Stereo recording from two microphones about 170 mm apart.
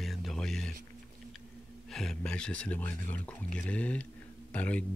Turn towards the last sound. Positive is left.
turn(degrees=10)  # may be behind; listen again after turning